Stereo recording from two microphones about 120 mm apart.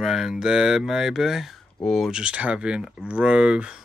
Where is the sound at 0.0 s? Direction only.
5° right (ahead or behind).